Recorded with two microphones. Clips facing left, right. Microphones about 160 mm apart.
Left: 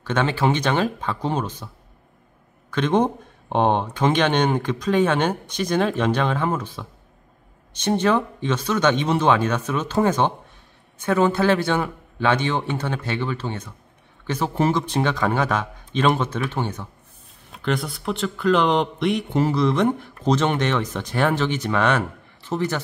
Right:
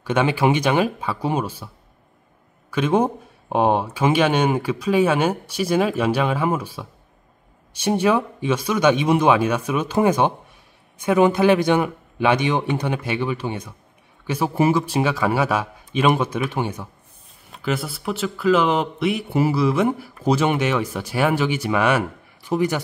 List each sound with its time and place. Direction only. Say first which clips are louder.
0.0 s speech: right 2 dB; 10° right (ahead or behind)
2.7 s speech: right 1 dB; 10° right (ahead or behind)